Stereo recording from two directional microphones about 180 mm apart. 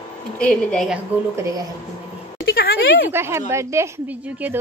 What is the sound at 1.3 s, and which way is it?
Speech, 15° right (ahead or behind).